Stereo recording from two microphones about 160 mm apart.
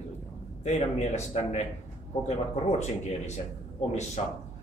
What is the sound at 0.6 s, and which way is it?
Speech, 45° left (ahead or behind).